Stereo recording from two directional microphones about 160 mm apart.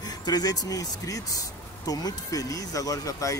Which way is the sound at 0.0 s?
25° left (ahead or behind).